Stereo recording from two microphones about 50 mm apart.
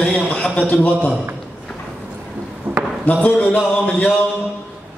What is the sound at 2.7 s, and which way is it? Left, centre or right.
Chop, right.